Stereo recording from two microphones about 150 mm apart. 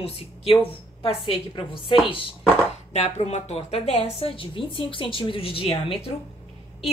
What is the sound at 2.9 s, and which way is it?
A woman's voice, 50° left (ahead or behind).